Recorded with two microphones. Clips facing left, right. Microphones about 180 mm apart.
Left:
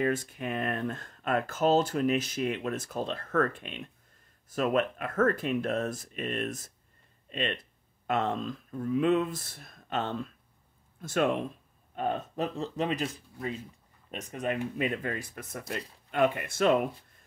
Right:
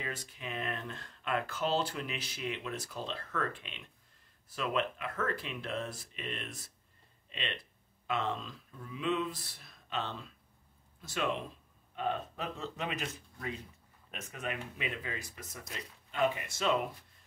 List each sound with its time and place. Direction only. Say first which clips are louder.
0.0 s speech: left 12 dB; 50° left (ahead or behind)